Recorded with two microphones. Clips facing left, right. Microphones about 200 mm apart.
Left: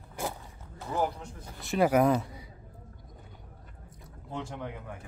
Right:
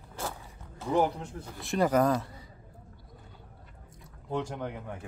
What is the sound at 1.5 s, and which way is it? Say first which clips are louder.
Speech: left 1 dB; 5° left (ahead or behind).